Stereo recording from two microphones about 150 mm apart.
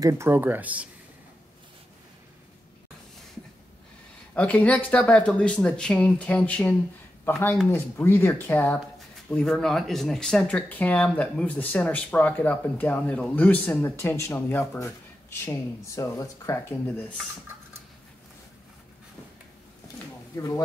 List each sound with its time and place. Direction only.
0.0 s speech: 15° right (ahead or behind)
4.4 s speech: 10° left (ahead or behind)